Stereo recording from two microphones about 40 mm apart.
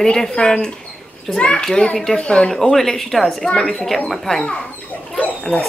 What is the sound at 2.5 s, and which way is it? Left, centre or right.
Speech, centre.